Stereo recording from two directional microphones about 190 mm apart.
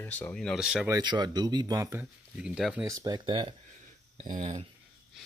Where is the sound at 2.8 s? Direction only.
20° right (ahead or behind).